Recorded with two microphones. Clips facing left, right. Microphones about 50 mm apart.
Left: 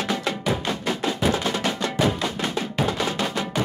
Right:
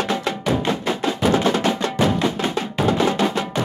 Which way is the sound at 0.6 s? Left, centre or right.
Right.